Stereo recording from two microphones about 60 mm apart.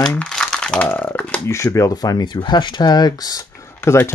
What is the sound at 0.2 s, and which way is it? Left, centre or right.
Crumpling, centre.